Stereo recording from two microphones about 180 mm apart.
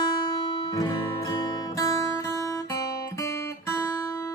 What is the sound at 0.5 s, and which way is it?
Music, 25° left (ahead or behind).